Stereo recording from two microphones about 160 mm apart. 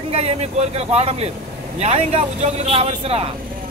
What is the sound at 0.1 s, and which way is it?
Speech, 40° right (ahead or behind).